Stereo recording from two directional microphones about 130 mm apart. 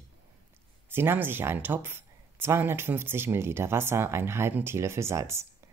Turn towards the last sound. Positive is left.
turn(degrees=-20)  # may be behind; listen again after turning